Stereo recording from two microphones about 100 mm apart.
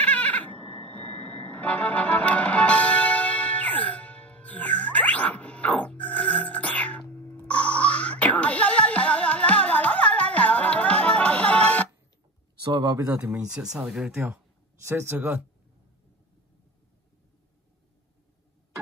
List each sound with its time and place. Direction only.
0.0 s music: 15° left (ahead or behind)
12.7 s speech: 35° right (ahead or behind)
13.7 s speech: 10° right (ahead or behind)